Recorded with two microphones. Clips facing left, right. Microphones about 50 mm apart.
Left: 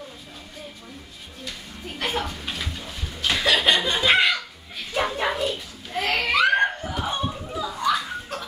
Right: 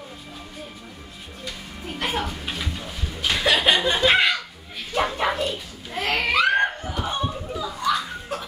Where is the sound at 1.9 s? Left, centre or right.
Centre.